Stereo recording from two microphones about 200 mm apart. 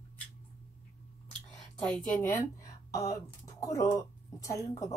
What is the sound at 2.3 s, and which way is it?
Speech, 15° left (ahead or behind).